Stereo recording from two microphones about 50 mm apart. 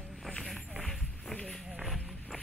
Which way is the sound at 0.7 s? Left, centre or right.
Centre.